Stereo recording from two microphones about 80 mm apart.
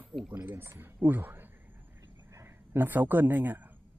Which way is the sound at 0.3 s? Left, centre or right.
Right.